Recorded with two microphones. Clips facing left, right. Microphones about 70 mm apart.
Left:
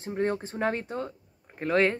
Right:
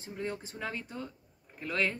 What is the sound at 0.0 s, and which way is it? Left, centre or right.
Speech, left.